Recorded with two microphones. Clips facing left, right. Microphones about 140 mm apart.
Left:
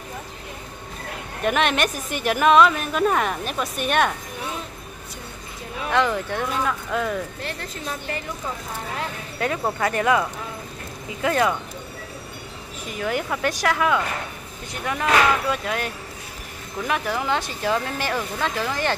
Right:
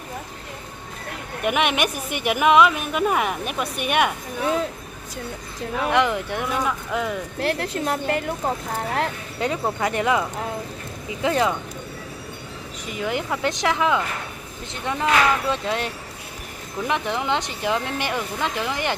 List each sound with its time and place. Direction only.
1.4 s a woman's voice: 10° right (ahead or behind)
5.9 s a woman's voice: 15° right (ahead or behind)
7.3 s speech: 75° right (ahead or behind)
9.4 s speech: 20° right (ahead or behind)
11.2 s speech: 20° right (ahead or behind)
12.9 s a woman's voice: 20° right (ahead or behind)